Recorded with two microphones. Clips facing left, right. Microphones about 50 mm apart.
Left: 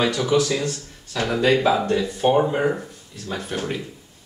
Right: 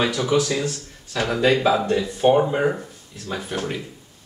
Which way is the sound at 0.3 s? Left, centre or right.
Centre.